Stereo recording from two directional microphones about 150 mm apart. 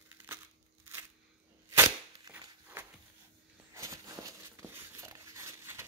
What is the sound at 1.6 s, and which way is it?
Cap gun, 20° right (ahead or behind).